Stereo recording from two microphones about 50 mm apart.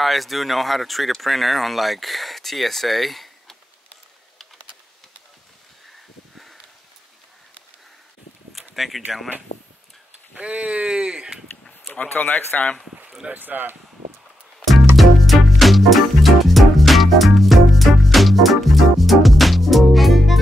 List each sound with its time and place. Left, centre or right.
0.0 s speech: centre
8.7 s speech: centre
10.3 s speech: right
11.9 s speech: left
12.3 s speech: left
13.3 s speech: right
14.6 s music: centre